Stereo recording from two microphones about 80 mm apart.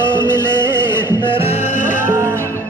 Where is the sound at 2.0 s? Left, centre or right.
Right.